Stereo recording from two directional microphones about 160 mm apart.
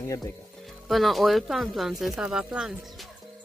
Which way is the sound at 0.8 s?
Centre (ahead or behind).